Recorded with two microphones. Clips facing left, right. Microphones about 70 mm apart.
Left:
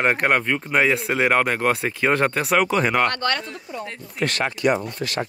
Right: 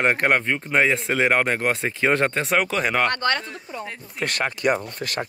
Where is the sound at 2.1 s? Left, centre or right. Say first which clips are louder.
Left 2 dB; right.